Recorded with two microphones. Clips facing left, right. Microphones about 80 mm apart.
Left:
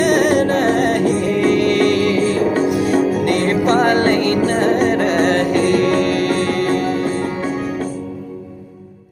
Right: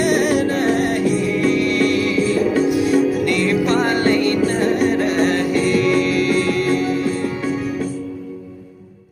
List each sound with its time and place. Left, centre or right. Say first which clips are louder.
0.0 s music: left 3 dB; left